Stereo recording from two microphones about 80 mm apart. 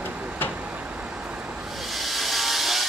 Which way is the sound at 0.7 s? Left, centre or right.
Centre.